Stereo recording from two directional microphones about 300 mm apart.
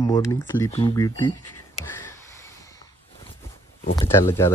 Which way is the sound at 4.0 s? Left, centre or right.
Centre.